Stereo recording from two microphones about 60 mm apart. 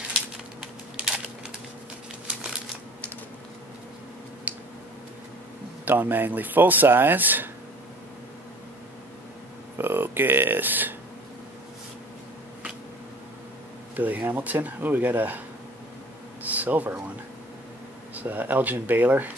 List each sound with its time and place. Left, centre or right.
4.5 s a sound: right
5.9 s speech: right
9.8 s speech: right
13.9 s speech: right
16.4 s speech: right
18.1 s speech: right